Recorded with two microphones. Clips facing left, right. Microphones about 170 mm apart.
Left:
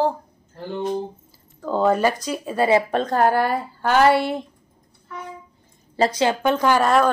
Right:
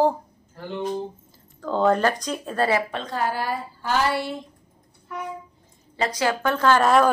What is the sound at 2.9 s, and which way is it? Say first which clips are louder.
Speech: left 8 dB; 45° left (ahead or behind).